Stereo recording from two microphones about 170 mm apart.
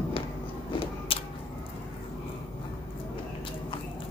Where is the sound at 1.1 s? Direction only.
30° left (ahead or behind).